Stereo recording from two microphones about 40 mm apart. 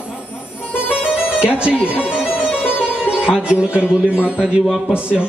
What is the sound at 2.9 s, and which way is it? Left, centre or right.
Music, right.